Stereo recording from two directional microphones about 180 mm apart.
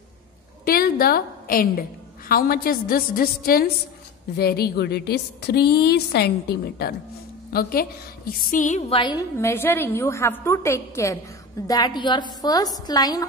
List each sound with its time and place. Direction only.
0.7 s a woman's voice: 55° left (ahead or behind)
8.3 s music: 45° left (ahead or behind)
8.9 s a woman's voice: 25° left (ahead or behind)
9.4 s a woman's voice: 15° left (ahead or behind)